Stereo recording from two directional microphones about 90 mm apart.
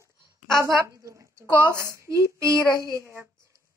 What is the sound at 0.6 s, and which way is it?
A child's voice, 35° right (ahead or behind).